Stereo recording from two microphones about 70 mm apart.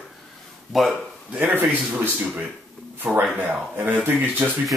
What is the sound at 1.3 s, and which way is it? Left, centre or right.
Speech, right.